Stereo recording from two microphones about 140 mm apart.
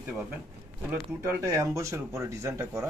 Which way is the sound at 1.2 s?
20° right (ahead or behind).